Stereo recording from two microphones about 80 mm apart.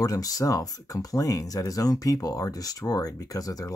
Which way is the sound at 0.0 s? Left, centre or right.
Left.